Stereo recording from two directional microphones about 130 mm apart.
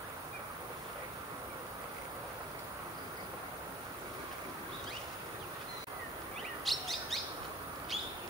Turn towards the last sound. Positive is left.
turn(degrees=0)  # may be behind; listen again after turning